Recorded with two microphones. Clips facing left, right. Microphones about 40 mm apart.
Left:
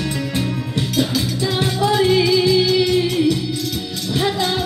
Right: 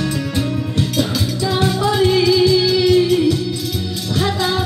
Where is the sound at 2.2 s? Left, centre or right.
Centre.